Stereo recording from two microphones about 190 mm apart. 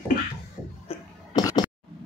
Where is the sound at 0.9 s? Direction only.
20° left (ahead or behind).